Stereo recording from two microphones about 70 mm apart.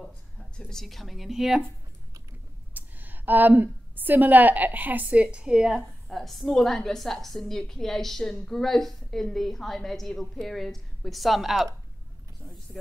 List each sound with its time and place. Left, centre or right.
0.6 s a woman's voice: centre
2.7 s a woman's voice: right
5.8 s a woman's voice: centre